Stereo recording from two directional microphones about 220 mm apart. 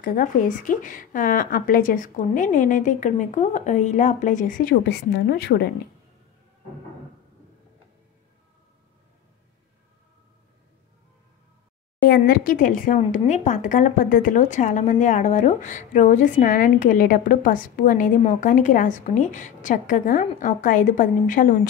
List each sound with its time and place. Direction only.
0.0 s speech: 40° left (ahead or behind)
12.1 s speech: 40° left (ahead or behind)